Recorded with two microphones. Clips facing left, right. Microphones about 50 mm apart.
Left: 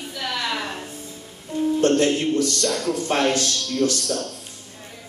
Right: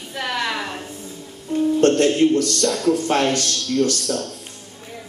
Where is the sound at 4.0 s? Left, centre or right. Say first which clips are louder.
Right 2 dB; centre.